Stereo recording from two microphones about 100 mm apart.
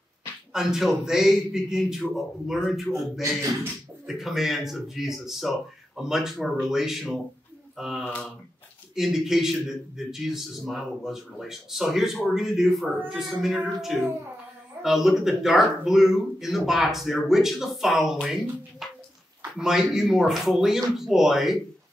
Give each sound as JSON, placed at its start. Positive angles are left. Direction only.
{"t": 0.5, "sound": "a man's voice", "side_deg": -5}
{"t": 4.0, "sound": "a man's voice", "side_deg": -5}
{"t": 8.0, "sound": "speech", "side_deg": 15}
{"t": 8.9, "sound": "a man's voice", "side_deg": -5}